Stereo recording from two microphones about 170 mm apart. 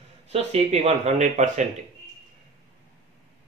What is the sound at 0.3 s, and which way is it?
Speech, 40° right (ahead or behind).